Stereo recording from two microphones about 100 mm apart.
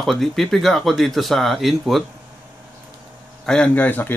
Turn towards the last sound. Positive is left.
turn(degrees=15)  # may be behind; listen again after turning